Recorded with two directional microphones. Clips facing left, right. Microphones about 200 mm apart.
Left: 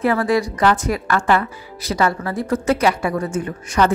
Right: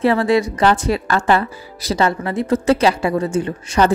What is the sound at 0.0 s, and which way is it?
Speech, 25° right (ahead or behind).